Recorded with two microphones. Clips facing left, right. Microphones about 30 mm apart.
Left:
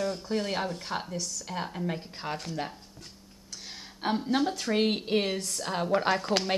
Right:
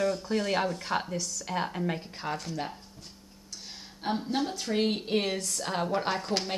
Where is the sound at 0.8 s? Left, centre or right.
Centre.